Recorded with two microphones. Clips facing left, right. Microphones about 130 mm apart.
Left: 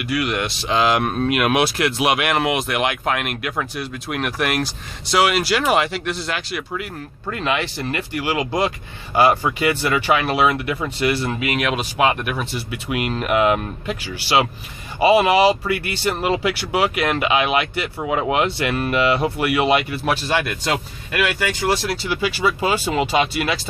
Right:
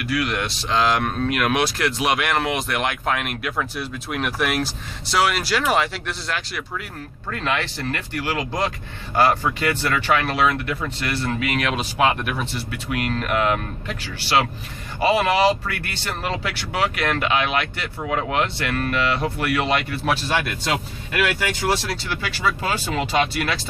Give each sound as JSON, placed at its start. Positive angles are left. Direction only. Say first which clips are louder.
{"t": 0.0, "sound": "speech", "louder": "left 2 dB", "side_deg": 5}